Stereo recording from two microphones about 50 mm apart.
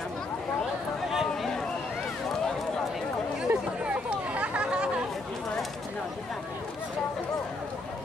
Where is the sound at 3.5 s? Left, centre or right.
Right.